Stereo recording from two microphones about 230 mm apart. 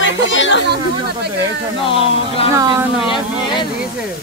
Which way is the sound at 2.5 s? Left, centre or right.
Centre.